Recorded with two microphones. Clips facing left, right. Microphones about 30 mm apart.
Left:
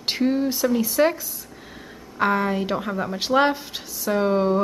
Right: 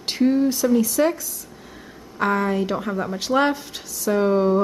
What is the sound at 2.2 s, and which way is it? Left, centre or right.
A woman's voice, centre.